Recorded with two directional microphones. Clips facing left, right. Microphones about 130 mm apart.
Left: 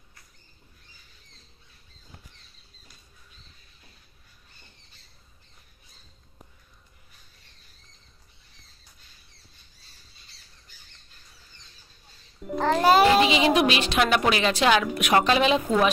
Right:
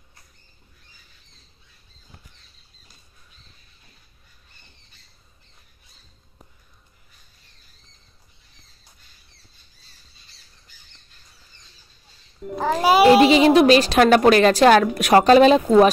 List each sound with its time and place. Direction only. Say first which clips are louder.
12.5 s music: right 2 dB; 10° right (ahead or behind)
13.1 s a woman's voice: right 7 dB; 40° right (ahead or behind)